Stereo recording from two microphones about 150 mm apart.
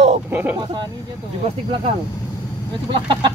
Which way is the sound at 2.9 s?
30° right (ahead or behind).